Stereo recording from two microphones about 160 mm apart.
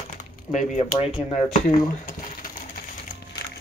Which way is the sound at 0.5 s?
50° left (ahead or behind).